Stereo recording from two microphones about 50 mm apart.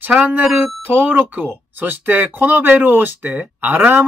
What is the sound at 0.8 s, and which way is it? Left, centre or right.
Speech, right.